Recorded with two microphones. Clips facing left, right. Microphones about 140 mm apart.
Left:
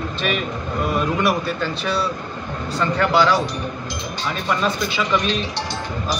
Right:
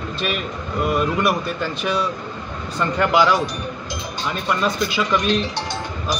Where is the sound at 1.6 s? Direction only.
15° right (ahead or behind).